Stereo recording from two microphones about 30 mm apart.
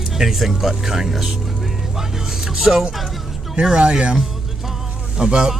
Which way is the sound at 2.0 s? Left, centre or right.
Centre.